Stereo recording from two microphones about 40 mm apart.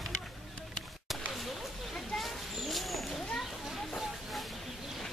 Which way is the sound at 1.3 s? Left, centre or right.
Centre.